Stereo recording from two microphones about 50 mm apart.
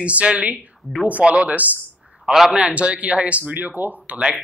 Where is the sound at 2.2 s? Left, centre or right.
Centre.